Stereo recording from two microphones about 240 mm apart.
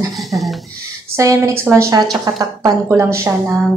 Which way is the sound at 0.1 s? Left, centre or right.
Centre.